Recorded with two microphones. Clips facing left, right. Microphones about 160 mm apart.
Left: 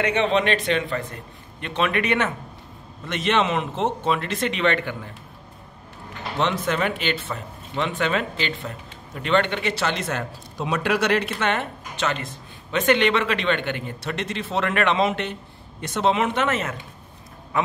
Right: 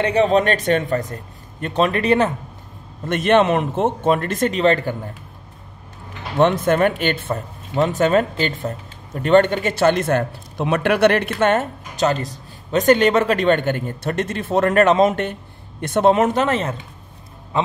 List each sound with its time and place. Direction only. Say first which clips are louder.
0.0 s a man's voice: right 5 dB; 35° right (ahead or behind)
3.1 s speech: right 7 dB; 50° right (ahead or behind)
6.3 s speech: right 8 dB; 50° right (ahead or behind); by 16.7 s 30° right (ahead or behind)